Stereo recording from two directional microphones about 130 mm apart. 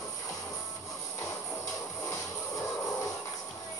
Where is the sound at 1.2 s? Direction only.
20° left (ahead or behind).